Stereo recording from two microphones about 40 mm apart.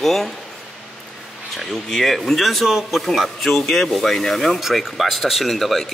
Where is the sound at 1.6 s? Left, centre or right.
Centre.